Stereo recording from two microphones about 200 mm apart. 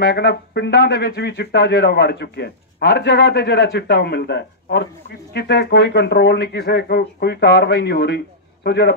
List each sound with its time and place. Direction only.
0.0 s a man's voice: 55° left (ahead or behind)